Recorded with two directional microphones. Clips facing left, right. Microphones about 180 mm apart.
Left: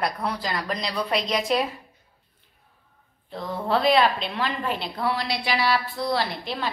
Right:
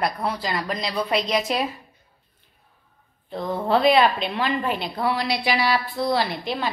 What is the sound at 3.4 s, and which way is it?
Speech, 25° right (ahead or behind).